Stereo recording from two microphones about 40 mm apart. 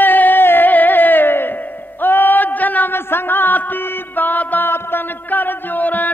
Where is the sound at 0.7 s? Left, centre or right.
Left.